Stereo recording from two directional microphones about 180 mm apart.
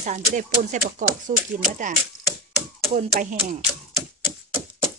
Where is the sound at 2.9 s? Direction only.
40° right (ahead or behind).